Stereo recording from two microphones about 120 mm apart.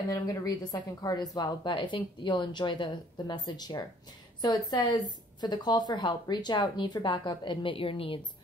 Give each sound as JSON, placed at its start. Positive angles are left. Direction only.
{"t": 0.1, "sound": "speech", "side_deg": 30}